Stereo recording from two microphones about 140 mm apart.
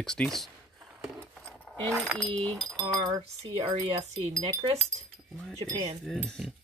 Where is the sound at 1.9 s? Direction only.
Centre (ahead or behind).